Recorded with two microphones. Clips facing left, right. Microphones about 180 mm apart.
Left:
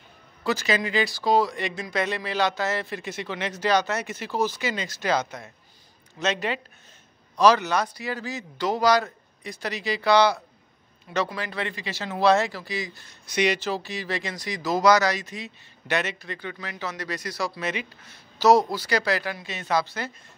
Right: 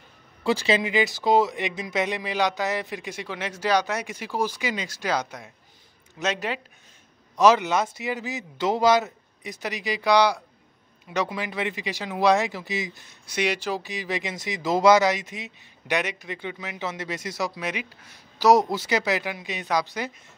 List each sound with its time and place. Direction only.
0.4 s speech: 25° right (ahead or behind); by 6.6 s 5° right (ahead or behind)
7.3 s speech: 20° right (ahead or behind)
13.3 s speech: 10° right (ahead or behind)